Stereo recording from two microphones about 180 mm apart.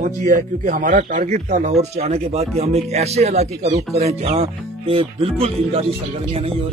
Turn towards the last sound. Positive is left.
turn(degrees=-30)  # may be behind; listen again after turning